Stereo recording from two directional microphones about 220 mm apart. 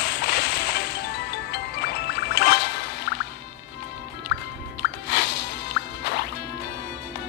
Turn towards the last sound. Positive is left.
turn(degrees=50)  # may be behind; listen again after turning